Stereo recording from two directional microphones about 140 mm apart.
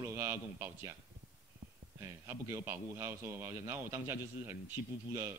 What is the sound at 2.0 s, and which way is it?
A man's voice, 20° right (ahead or behind).